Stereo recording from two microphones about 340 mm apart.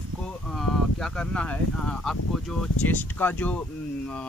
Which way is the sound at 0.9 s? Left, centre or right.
Centre.